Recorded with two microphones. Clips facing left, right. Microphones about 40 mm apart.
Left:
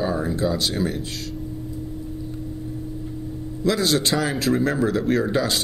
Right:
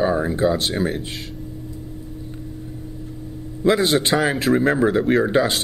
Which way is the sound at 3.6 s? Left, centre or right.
Right.